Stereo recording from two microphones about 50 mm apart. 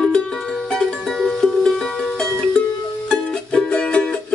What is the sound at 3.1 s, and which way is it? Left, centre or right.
Music, centre.